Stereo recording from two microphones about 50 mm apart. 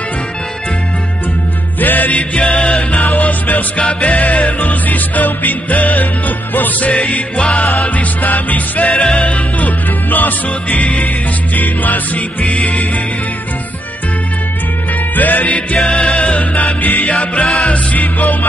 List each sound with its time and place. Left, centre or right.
1.8 s music: left; by 2.8 s centre
3.2 s music: left
7.3 s music: centre
7.9 s music: left
8.9 s music: left
15.1 s music: left; by 16.2 s centre
16.2 s music: left
17.1 s music: left
17.9 s music: left